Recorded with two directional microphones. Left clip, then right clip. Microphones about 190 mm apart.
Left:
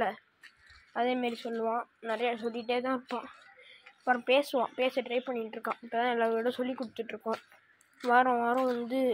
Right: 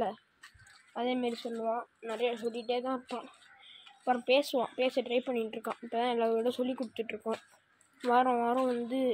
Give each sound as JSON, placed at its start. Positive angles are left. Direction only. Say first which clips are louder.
{"t": 0.9, "sound": "a woman's voice", "louder": "left 3 dB", "side_deg": 5}
{"t": 4.0, "sound": "speech", "louder": "left 1 dB", "side_deg": -5}
{"t": 4.8, "sound": "speech", "louder": "even", "side_deg": -15}
{"t": 5.6, "sound": "speech", "louder": "left 2 dB", "side_deg": -10}